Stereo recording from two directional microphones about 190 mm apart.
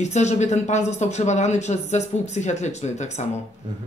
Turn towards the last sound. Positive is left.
turn(degrees=35)  # may be behind; listen again after turning